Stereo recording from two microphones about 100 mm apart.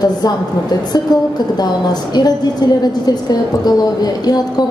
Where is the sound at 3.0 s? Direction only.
40° left (ahead or behind).